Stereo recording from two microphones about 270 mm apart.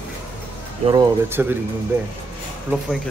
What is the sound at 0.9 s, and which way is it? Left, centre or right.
Speech, centre.